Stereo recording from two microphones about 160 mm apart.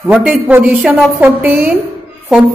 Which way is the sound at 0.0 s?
5° right (ahead or behind).